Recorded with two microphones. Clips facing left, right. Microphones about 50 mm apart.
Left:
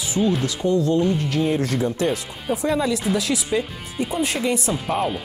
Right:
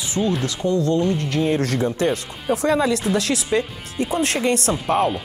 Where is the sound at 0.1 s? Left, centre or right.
Centre.